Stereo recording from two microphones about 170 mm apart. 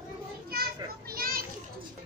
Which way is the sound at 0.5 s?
60° right (ahead or behind).